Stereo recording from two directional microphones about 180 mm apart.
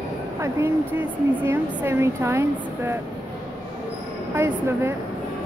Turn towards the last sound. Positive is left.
turn(degrees=-15)  # may be behind; listen again after turning